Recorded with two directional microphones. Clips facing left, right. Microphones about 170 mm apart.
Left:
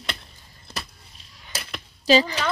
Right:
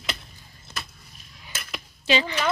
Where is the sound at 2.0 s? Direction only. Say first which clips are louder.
Left 5 dB; 35° left (ahead or behind).